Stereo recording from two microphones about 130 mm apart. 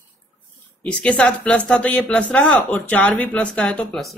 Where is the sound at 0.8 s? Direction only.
10° left (ahead or behind).